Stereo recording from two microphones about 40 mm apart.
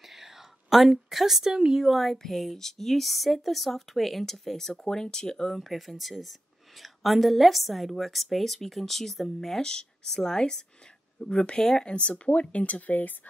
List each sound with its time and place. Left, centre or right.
0.1 s a sound: centre
1.9 s a woman's voice: centre
5.7 s a woman's voice: centre
9.6 s speech: centre
11.9 s speech: left